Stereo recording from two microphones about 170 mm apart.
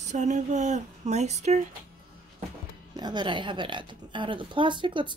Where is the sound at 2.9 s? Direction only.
25° right (ahead or behind).